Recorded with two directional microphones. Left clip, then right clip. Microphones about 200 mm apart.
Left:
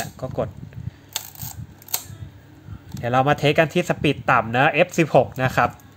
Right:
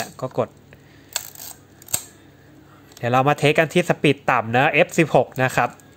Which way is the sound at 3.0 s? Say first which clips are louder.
Right 1 dB; 10° right (ahead or behind).